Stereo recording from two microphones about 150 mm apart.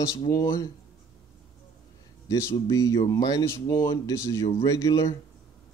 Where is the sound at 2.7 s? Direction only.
20° left (ahead or behind).